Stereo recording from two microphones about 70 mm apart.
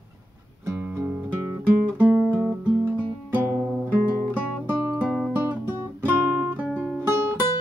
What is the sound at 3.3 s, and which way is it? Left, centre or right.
Music, right.